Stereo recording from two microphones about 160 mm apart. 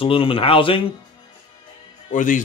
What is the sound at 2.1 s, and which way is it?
Speech, 55° left (ahead or behind).